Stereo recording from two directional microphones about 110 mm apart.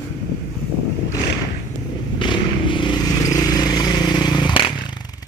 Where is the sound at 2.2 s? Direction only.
45° left (ahead or behind).